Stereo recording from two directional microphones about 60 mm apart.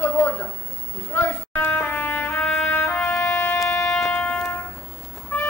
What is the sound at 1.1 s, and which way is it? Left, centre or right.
Trumpet, left.